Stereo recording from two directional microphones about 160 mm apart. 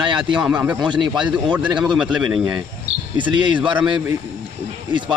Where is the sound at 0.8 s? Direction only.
30° right (ahead or behind).